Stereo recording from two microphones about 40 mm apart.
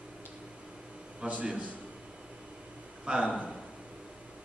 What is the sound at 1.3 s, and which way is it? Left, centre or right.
Speech, right.